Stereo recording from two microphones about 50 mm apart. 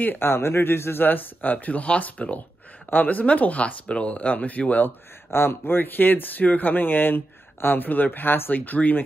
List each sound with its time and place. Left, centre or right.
0.0 s speech: left
1.0 s speech: left
4.8 s speech: left